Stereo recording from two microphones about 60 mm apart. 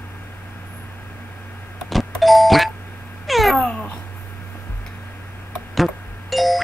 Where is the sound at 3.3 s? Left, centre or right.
Centre.